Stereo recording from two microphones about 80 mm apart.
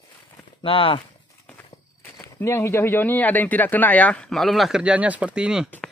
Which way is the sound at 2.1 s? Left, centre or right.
Left.